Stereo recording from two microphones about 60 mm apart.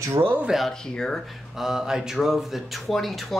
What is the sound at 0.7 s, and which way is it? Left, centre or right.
Speech, centre.